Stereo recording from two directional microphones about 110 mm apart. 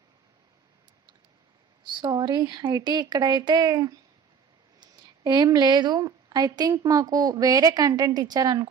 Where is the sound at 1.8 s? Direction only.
45° right (ahead or behind).